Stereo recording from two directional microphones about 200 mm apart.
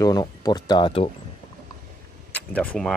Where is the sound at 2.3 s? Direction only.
5° left (ahead or behind).